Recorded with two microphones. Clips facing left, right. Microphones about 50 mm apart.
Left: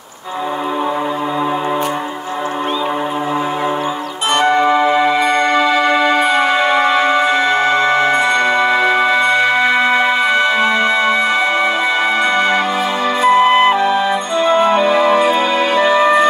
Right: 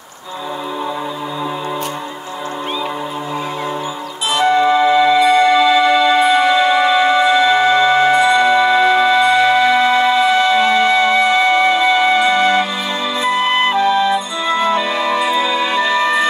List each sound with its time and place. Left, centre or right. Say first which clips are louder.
4.3 s music: even; left
12.2 s music: right 1 dB; left
13.5 s music: left 3 dB; left
14.1 s music: left 4 dB; left
15.9 s music: left 5 dB; left